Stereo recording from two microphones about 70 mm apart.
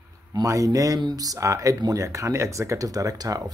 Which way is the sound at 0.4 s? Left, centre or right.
Right.